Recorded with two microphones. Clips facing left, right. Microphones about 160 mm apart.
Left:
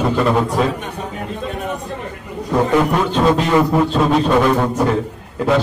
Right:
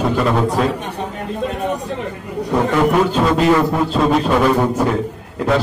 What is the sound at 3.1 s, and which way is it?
Speech, 5° right (ahead or behind).